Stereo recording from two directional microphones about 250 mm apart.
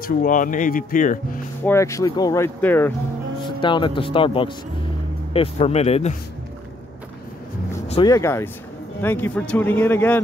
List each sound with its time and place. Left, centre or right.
0.0 s speech: left
1.6 s speech: centre
3.3 s a man's voice: centre
7.9 s speech: centre